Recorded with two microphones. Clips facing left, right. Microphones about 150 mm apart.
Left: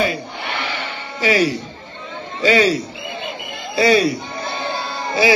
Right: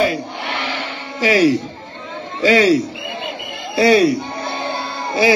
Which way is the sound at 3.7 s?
60° right (ahead or behind).